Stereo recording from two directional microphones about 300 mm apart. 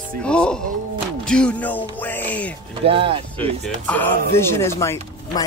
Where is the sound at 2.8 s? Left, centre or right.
Centre.